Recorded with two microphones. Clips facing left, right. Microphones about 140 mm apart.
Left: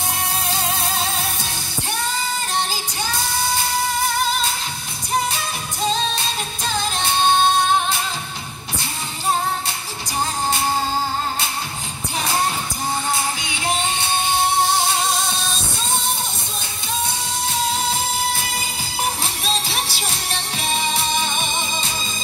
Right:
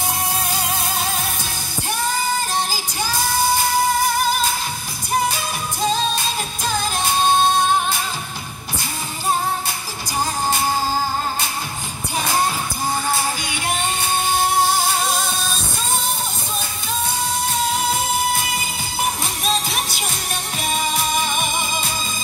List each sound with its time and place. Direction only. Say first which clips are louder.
19.4 s music: right 3 dB; 30° left (ahead or behind)